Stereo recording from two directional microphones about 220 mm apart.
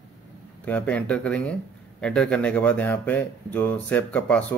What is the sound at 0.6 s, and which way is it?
Speech, 5° left (ahead or behind).